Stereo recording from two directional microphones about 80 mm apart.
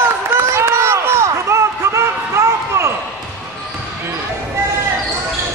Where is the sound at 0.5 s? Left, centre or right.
Right.